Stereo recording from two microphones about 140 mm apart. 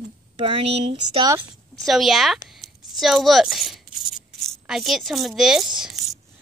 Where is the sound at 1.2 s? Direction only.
25° right (ahead or behind).